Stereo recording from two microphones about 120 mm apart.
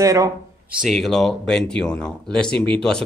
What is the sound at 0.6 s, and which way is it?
Speech, 5° right (ahead or behind).